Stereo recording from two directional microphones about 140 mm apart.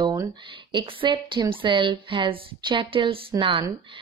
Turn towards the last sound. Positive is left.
turn(degrees=-35)  # may be behind; listen again after turning